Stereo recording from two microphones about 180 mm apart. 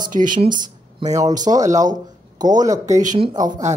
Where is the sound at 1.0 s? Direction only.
20° right (ahead or behind).